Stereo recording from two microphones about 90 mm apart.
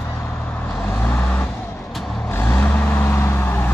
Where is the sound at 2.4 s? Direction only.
25° left (ahead or behind).